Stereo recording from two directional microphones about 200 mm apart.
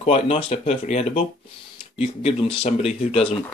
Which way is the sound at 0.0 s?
30° left (ahead or behind).